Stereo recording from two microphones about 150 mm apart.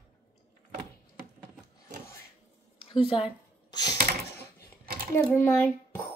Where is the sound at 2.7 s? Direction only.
35° left (ahead or behind).